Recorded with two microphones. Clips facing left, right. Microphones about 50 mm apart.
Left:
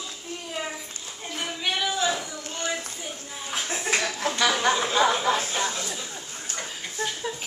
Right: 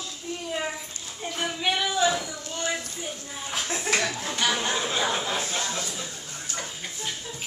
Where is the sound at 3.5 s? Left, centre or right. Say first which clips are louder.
Even; centre.